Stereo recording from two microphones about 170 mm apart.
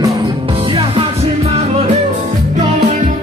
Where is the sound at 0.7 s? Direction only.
30° right (ahead or behind).